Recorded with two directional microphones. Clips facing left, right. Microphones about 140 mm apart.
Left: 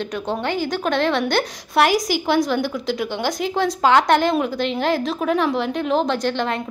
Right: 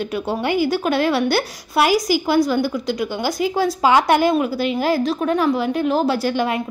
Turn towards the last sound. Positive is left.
turn(degrees=-10)  # may be behind; listen again after turning